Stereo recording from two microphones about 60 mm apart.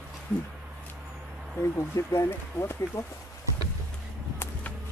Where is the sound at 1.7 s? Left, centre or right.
Left.